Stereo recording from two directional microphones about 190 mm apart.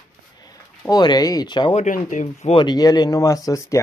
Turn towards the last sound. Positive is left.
turn(degrees=15)  # may be behind; listen again after turning